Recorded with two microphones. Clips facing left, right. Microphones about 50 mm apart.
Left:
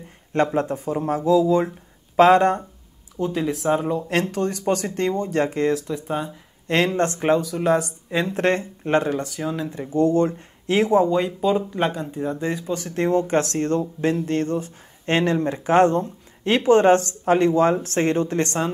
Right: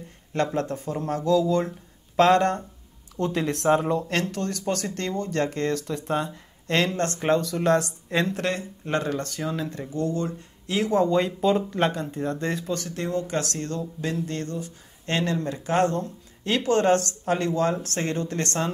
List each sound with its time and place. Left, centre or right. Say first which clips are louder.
0.3 s speech: left 5 dB; left
3.2 s speech: left 2 dB; centre
4.1 s speech: left 4 dB; left
6.8 s speech: left 5 dB; left
8.4 s speech: left 7 dB; left
9.2 s speech: left 3 dB; centre; by 10.9 s left
10.9 s speech: left 2 dB; centre
11.1 s speech: left 1 dB; centre
12.8 s speech: left 7 dB; left